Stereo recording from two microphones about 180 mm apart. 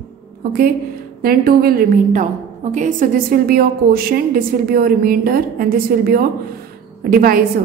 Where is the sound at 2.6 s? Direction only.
40° right (ahead or behind).